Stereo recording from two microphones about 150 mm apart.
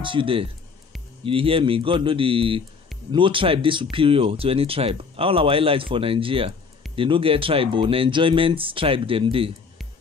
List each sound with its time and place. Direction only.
0.0 s speech: 35° right (ahead or behind)